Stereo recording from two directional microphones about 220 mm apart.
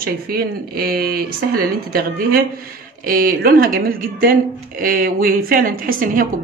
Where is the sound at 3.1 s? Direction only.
40° right (ahead or behind).